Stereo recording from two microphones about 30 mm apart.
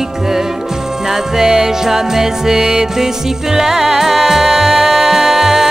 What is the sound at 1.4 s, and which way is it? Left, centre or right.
Music, centre.